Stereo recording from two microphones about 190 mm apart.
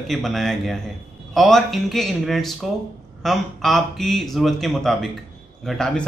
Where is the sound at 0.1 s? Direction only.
Centre (ahead or behind).